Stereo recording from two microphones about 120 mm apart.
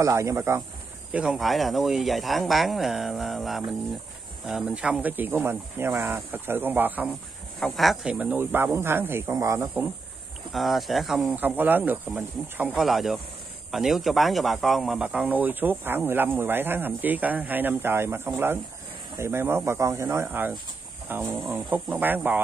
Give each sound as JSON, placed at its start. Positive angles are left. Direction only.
{"t": 0.0, "sound": "speech", "side_deg": -25}
{"t": 1.1, "sound": "speech", "side_deg": -5}
{"t": 7.6, "sound": "speech", "side_deg": 0}
{"t": 10.5, "sound": "speech", "side_deg": 0}
{"t": 11.3, "sound": "speech", "side_deg": -15}
{"t": 12.7, "sound": "speech", "side_deg": 0}